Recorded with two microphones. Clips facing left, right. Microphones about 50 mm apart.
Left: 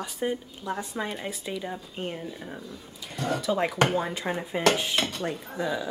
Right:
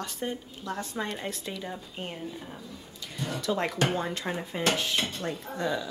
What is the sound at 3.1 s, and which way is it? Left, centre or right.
Speech, left.